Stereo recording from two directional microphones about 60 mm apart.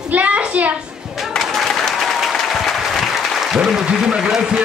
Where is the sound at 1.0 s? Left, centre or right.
Centre.